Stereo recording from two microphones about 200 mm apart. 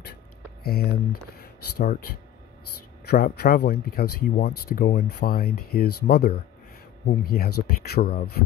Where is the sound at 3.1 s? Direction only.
55° left (ahead or behind).